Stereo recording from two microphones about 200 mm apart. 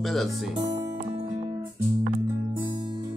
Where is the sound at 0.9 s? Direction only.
25° right (ahead or behind).